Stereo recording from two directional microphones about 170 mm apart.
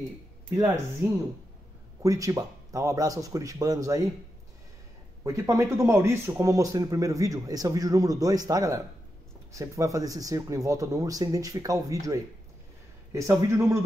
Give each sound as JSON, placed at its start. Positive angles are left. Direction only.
{"t": 1.0, "sound": "a man's voice", "side_deg": -15}
{"t": 5.2, "sound": "a man's voice", "side_deg": -15}